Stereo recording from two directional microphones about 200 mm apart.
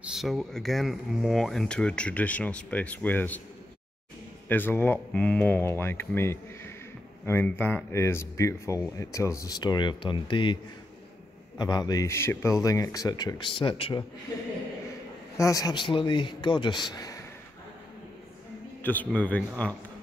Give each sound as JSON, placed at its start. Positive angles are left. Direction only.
{"t": 0.1, "sound": "speech", "side_deg": 0}
{"t": 4.5, "sound": "a man's voice", "side_deg": 10}
{"t": 15.3, "sound": "a man's voice", "side_deg": 15}
{"t": 18.8, "sound": "speech", "side_deg": 10}